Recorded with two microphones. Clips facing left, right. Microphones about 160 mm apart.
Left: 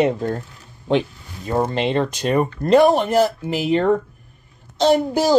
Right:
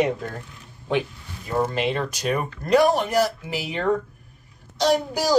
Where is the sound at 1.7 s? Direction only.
25° left (ahead or behind).